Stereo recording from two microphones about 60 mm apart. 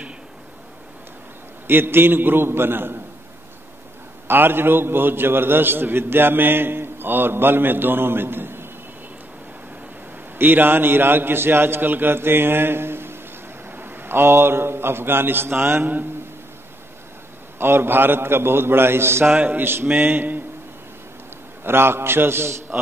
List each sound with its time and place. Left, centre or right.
1.7 s a man's voice: right
4.3 s a man's voice: right
10.1 s a man's voice: right
17.6 s a man's voice: right
19.3 s a man's voice: right
21.6 s a man's voice: right